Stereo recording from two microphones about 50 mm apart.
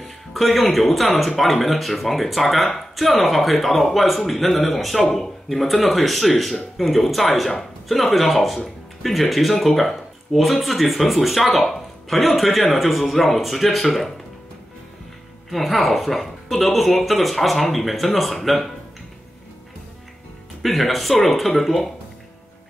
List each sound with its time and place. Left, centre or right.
0.0 s speech: centre
15.5 s speech: centre
20.6 s speech: centre